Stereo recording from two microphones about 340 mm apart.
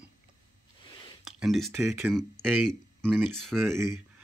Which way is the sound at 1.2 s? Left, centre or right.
Centre.